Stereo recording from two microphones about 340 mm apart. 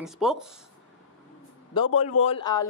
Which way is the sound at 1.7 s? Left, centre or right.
Centre.